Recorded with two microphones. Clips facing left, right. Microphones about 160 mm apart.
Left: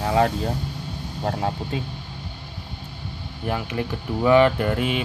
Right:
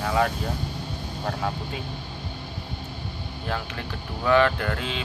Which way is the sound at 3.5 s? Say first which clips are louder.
Left 6 dB; 15° left (ahead or behind).